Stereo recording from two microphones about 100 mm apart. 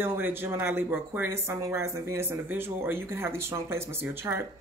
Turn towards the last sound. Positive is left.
turn(degrees=-25)  # may be behind; listen again after turning